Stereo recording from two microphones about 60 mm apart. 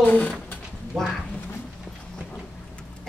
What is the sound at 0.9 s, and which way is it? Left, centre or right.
Speech, centre.